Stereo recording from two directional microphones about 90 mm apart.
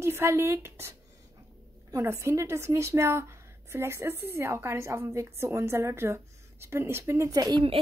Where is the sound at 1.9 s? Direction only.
35° right (ahead or behind).